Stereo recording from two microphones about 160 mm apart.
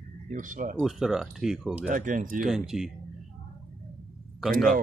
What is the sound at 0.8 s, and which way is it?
Speech, centre (ahead or behind).